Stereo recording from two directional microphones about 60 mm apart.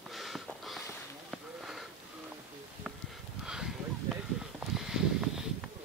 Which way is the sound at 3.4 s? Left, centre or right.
Centre.